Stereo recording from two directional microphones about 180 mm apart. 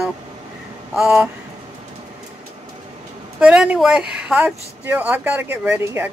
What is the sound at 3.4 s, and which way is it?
A woman's voice, 5° right (ahead or behind).